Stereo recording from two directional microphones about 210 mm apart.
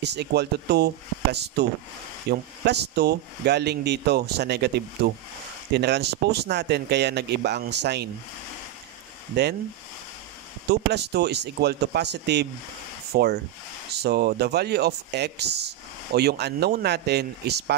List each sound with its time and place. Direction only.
0.0 s speech: 55° right (ahead or behind)
10.7 s speech: 55° right (ahead or behind)